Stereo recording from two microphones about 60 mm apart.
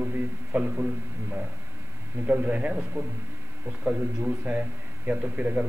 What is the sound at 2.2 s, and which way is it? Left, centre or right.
Speech, right.